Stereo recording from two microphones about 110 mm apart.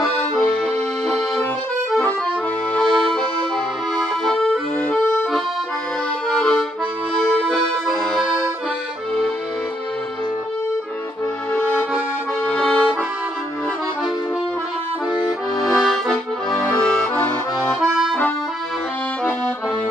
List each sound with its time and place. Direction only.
1.9 s accordion: 10° left (ahead or behind)
12.4 s accordion: 10° left (ahead or behind)
15.6 s accordion: centre (ahead or behind)
16.6 s accordion: 15° left (ahead or behind)